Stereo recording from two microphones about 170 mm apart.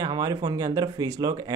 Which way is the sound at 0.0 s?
25° right (ahead or behind).